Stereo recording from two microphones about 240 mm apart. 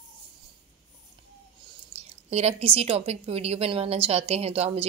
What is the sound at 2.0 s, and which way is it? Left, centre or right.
Speech, right.